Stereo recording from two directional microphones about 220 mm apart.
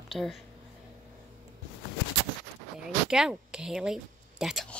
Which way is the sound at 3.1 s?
5° right (ahead or behind).